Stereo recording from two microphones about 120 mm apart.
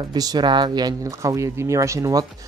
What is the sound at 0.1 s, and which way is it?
Speech, 35° right (ahead or behind).